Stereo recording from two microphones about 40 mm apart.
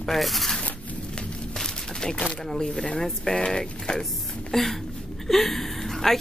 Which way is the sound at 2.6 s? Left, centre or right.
Centre.